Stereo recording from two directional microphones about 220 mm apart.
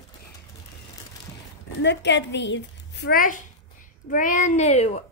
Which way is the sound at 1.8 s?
50° left (ahead or behind).